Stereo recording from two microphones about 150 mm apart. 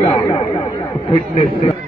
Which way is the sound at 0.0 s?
40° left (ahead or behind).